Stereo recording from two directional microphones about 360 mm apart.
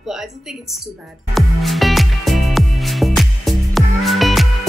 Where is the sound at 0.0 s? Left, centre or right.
Centre.